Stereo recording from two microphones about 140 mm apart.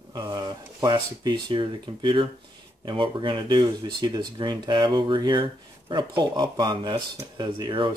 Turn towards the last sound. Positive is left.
turn(degrees=-35)  # may be behind; listen again after turning